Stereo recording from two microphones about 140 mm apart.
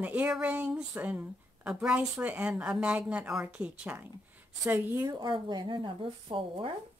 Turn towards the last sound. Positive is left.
turn(degrees=-40)  # may be behind; listen again after turning